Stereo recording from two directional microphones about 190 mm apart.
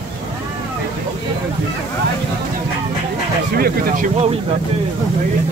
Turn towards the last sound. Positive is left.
turn(degrees=-45)  # may be behind; listen again after turning